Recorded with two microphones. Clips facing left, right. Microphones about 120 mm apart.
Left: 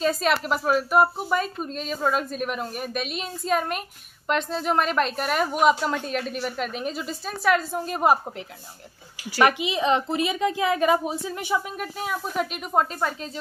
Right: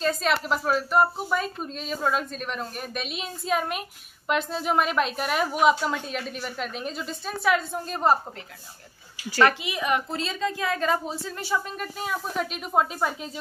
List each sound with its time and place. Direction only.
0.0 s a woman's voice: 5° left (ahead or behind)
9.3 s a woman's voice: 15° left (ahead or behind); by 13.3 s 5° right (ahead or behind)